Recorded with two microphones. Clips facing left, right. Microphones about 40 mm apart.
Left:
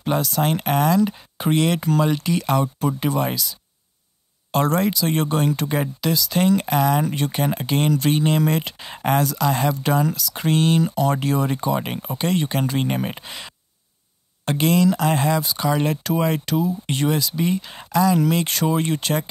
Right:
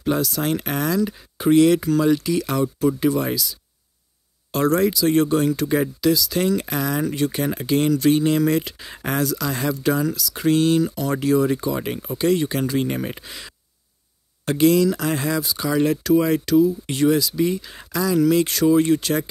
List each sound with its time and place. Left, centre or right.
0.0 s speech: centre